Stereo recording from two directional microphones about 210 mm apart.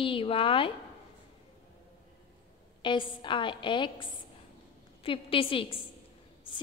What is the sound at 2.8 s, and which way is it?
A woman's voice, 25° left (ahead or behind).